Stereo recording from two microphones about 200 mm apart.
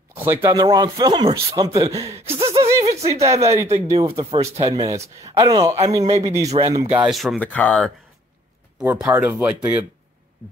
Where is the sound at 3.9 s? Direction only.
30° right (ahead or behind).